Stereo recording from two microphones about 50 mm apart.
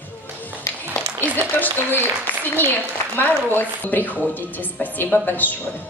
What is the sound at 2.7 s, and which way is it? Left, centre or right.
A woman's voice, left.